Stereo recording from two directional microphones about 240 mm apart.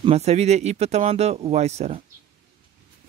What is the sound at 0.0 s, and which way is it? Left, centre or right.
Speech, right.